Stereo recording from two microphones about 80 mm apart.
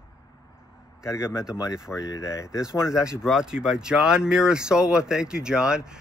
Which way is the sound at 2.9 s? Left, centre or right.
Centre.